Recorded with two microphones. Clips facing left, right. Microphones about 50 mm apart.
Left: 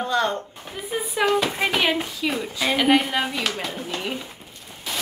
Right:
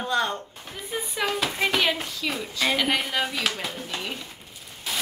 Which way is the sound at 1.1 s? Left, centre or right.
Centre.